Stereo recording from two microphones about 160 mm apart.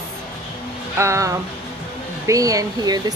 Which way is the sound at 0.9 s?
20° right (ahead or behind).